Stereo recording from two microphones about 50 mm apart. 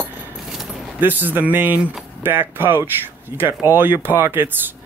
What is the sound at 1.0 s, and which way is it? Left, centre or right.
Speech, right.